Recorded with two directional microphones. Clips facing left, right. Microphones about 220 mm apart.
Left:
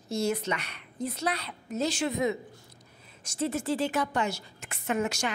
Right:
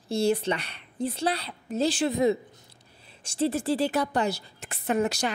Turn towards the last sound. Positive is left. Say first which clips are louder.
# right 4 dB
turn(degrees=-35)  # may be behind; listen again after turning